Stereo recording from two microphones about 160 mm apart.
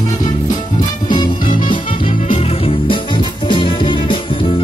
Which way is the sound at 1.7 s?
30° left (ahead or behind).